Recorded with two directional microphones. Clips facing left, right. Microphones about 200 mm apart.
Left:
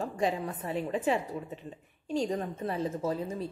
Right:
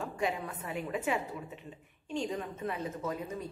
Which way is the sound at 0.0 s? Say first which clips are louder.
Left 4 dB; 35° left (ahead or behind).